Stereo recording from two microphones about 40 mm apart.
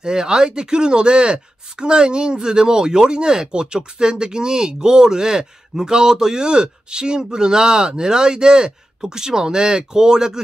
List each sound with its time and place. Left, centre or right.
0.0 s speech: centre